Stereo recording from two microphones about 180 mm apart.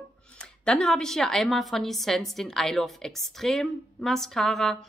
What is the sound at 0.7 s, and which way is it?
A woman's voice, 5° left (ahead or behind).